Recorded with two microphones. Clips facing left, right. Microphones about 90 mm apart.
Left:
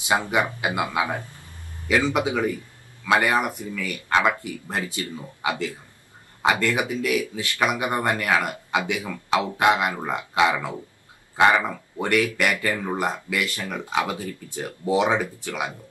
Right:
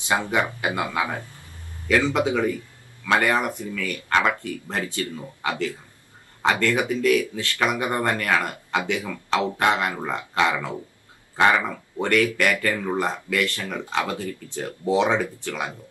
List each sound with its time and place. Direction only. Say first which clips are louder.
0.1 s speech: left 1 dB; 15° left (ahead or behind)